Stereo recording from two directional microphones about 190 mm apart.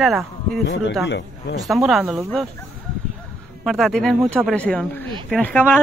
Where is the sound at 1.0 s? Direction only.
65° left (ahead or behind).